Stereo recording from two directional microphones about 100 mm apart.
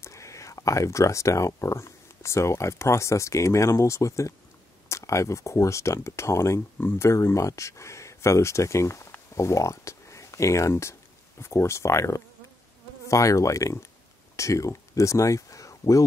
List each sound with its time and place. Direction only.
0.0 s speech: 30° left (ahead or behind)